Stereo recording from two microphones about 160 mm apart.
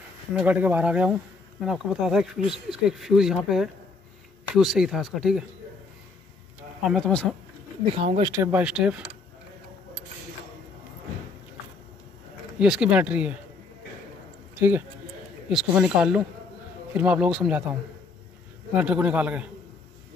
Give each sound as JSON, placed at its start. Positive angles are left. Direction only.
{"t": 0.3, "sound": "speech", "side_deg": -10}
{"t": 6.8, "sound": "speech", "side_deg": 0}
{"t": 8.0, "sound": "speech", "side_deg": -40}
{"t": 8.3, "sound": "speech", "side_deg": -15}
{"t": 12.5, "sound": "speech", "side_deg": -5}
{"t": 14.6, "sound": "speech", "side_deg": -10}